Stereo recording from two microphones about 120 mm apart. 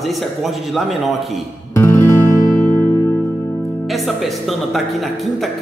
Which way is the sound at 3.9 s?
Centre (ahead or behind).